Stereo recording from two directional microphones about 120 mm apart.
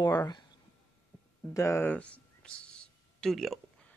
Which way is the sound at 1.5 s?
20° left (ahead or behind).